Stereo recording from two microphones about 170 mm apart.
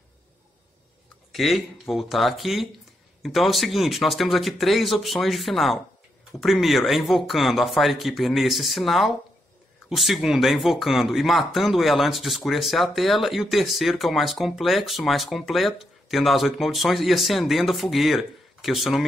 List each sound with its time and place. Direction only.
1.3 s speech: centre (ahead or behind)